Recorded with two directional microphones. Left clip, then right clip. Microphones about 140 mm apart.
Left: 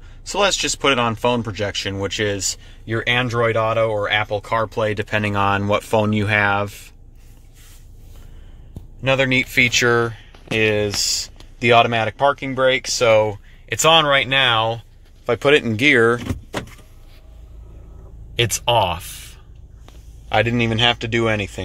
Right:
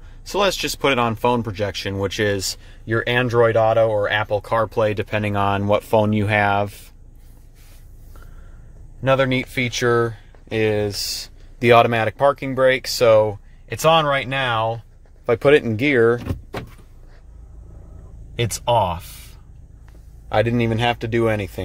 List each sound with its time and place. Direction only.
0.2 s speech: 25° right (ahead or behind)
9.0 s speech: 30° right (ahead or behind)
11.6 s speech: 40° right (ahead or behind)
13.7 s speech: 15° right (ahead or behind)
15.2 s speech: 20° right (ahead or behind)
18.3 s speech: 10° right (ahead or behind)
20.2 s speech: 20° right (ahead or behind)